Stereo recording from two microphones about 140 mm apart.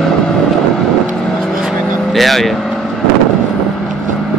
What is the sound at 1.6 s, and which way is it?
Vehicle, centre (ahead or behind).